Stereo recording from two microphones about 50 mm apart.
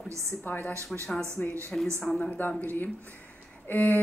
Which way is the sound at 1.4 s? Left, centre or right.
Left.